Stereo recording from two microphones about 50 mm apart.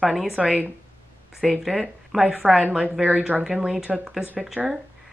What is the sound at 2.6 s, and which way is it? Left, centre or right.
Speech, right.